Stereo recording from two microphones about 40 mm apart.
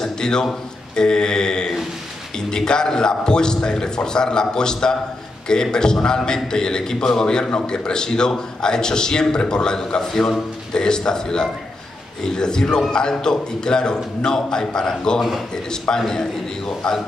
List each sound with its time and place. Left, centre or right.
0.0 s a man's voice: centre
0.9 s mantra: centre
2.3 s a man's voice: centre
15.1 s a man's voice: centre
16.1 s a man's voice: centre